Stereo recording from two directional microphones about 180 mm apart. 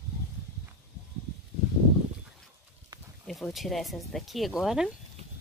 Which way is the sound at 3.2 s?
Centre (ahead or behind).